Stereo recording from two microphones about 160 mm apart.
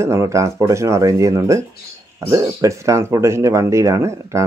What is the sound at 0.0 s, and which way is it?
Speech, 20° right (ahead or behind).